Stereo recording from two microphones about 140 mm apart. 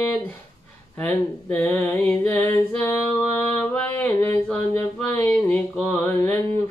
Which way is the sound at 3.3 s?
20° left (ahead or behind).